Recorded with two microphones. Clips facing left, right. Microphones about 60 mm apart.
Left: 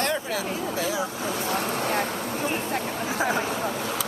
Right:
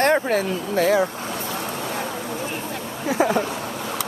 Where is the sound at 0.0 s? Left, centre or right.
Right.